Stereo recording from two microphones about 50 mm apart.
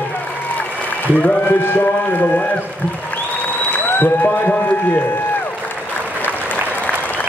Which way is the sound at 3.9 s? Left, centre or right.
Left.